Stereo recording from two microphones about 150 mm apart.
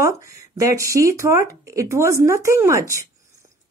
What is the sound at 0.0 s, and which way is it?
A woman's voice, 20° right (ahead or behind).